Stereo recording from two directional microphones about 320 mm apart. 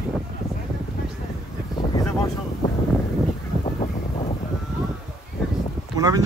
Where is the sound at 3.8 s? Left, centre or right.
Centre.